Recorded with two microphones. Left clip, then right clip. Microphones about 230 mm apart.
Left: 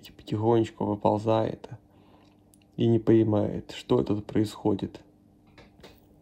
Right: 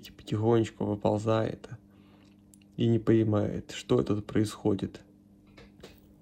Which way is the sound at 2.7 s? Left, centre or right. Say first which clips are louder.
Left 4 dB; centre.